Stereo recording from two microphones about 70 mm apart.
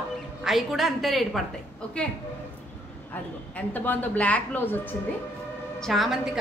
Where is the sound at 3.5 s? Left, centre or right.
Left.